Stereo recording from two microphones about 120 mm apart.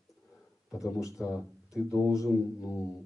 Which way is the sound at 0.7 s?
25° left (ahead or behind).